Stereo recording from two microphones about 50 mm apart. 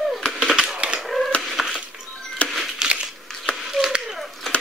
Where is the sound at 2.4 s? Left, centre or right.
Left.